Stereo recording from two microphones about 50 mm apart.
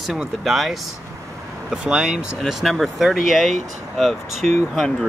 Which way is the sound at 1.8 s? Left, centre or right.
Centre.